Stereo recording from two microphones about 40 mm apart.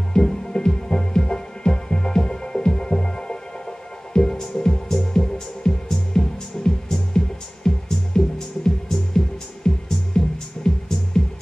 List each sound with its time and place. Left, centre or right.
0.1 s music: centre